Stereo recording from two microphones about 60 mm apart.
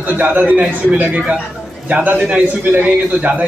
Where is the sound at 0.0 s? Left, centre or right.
Right.